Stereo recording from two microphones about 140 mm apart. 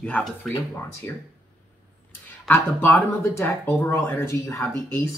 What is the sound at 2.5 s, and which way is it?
Speech, 15° left (ahead or behind).